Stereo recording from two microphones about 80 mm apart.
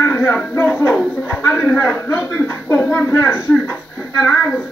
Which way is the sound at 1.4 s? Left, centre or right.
Left.